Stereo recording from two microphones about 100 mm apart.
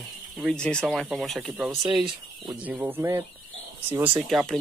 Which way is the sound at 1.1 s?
Centre (ahead or behind).